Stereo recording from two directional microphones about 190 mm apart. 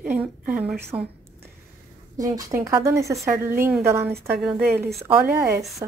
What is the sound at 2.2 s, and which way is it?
A woman's voice, 20° right (ahead or behind).